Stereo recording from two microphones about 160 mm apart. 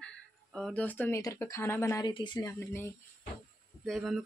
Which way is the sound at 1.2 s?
20° left (ahead or behind).